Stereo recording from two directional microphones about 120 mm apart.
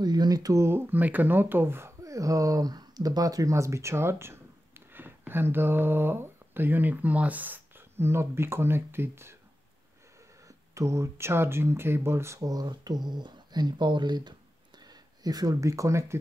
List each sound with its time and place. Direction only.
0.0 s speech: 35° right (ahead or behind); by 9.3 s 20° right (ahead or behind)
10.7 s speech: 25° right (ahead or behind)